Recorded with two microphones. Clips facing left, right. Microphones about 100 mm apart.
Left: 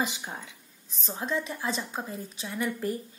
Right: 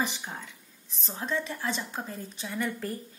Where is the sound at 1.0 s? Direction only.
15° left (ahead or behind).